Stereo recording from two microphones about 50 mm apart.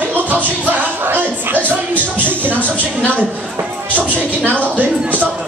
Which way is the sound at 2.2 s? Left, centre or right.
Left.